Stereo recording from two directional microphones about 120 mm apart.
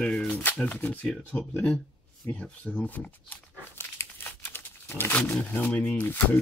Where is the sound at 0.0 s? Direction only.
10° left (ahead or behind).